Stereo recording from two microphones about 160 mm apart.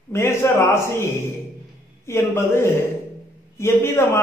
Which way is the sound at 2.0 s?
15° left (ahead or behind).